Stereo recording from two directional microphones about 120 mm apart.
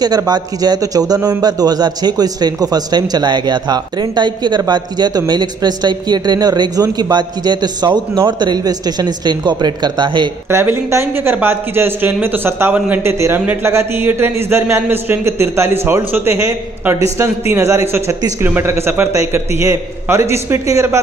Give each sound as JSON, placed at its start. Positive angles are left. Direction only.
{"t": 0.0, "sound": "a man's voice", "side_deg": -35}
{"t": 10.5, "sound": "a man's voice", "side_deg": -20}